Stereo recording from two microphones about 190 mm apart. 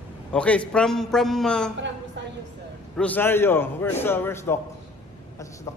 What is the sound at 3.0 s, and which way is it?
A man's voice, 10° left (ahead or behind).